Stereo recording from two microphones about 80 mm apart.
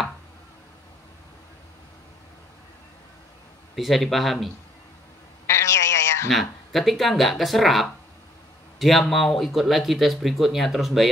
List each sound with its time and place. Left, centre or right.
3.7 s speech: centre
5.5 s a sound: left
6.7 s speech: centre